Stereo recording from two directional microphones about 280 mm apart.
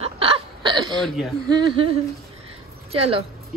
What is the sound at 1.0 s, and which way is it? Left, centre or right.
Speech, centre.